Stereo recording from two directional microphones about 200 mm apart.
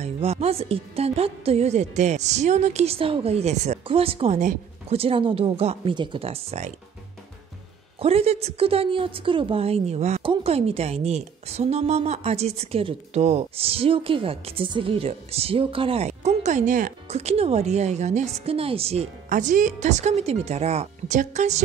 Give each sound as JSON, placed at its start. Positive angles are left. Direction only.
{"t": 0.0, "sound": "a woman's voice", "side_deg": -30}
{"t": 8.0, "sound": "a woman's voice", "side_deg": -30}